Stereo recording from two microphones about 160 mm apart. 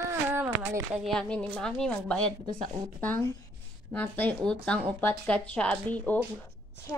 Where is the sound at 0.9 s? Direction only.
Centre (ahead or behind).